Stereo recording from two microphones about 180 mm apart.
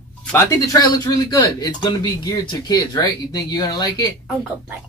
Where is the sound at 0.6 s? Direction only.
20° left (ahead or behind).